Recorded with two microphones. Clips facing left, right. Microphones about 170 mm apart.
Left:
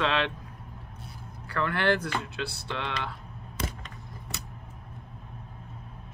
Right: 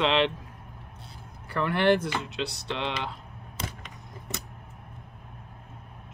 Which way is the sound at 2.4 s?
20° right (ahead or behind).